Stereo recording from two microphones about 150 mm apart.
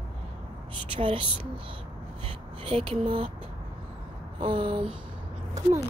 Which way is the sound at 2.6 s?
35° right (ahead or behind).